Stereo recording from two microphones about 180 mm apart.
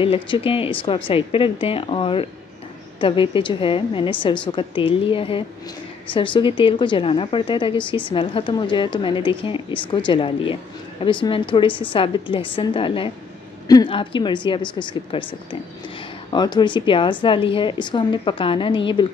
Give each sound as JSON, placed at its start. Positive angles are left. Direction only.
{"t": 0.0, "sound": "speech", "side_deg": 30}
{"t": 16.3, "sound": "speech", "side_deg": 25}